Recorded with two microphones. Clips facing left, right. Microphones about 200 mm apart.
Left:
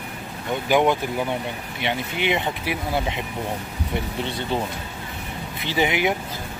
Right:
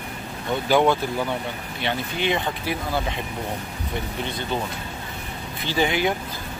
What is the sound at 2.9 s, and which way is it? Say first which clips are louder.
Speech: left 3 dB; 20° left (ahead or behind).